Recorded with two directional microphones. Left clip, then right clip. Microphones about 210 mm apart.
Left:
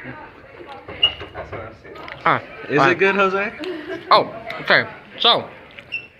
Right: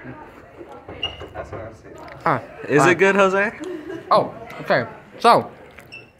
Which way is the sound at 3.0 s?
50° right (ahead or behind).